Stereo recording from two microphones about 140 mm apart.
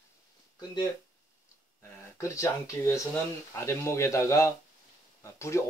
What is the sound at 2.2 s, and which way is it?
Speech, 20° left (ahead or behind).